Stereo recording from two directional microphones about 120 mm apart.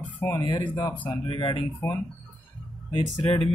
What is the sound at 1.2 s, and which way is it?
Speech, 40° left (ahead or behind).